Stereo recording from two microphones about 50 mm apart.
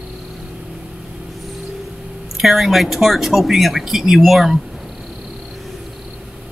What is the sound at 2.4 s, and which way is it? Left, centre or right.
Speech, centre.